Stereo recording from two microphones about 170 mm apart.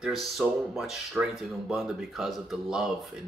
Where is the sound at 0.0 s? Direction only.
Centre (ahead or behind).